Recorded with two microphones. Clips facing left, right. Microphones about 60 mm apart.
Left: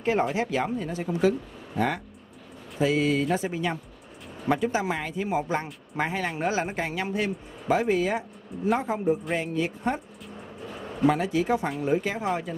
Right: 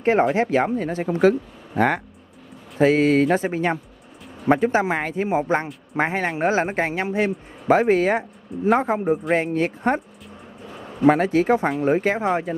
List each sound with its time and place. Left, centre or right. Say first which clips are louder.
0.0 s speech: right 7 dB; right
2.8 s speech: right 7 dB; right
7.2 s speech: right 7 dB; right
11.1 s speech: right 7 dB; right